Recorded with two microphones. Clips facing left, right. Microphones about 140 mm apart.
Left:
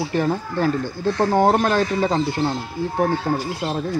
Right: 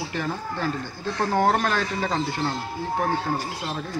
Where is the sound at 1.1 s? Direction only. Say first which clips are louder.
Left 4 dB; 25° left (ahead or behind).